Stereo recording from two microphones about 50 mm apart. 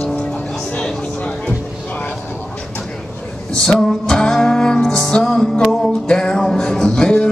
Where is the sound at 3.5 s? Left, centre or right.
Centre.